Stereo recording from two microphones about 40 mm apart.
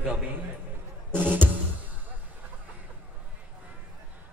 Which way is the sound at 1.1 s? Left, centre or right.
Right.